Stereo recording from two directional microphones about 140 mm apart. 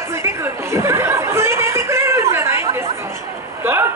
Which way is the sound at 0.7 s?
20° right (ahead or behind).